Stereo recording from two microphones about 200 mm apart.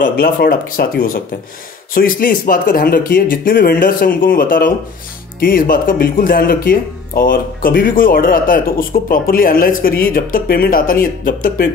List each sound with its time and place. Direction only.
0.2 s speech: 45° left (ahead or behind)